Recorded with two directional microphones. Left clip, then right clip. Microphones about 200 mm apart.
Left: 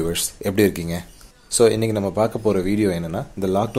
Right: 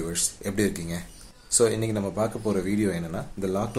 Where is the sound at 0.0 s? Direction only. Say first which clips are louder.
Left 7 dB; 35° left (ahead or behind).